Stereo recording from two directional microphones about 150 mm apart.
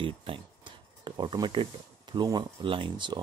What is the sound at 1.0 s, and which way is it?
Speech, 30° right (ahead or behind).